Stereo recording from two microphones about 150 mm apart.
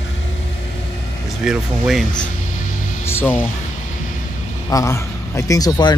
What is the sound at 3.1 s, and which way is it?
Speech, 15° left (ahead or behind).